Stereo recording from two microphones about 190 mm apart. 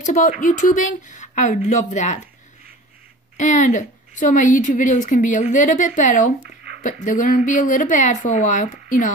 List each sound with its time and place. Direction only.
0.0 s a woman's voice: 40° left (ahead or behind)
3.3 s a woman's voice: 40° left (ahead or behind)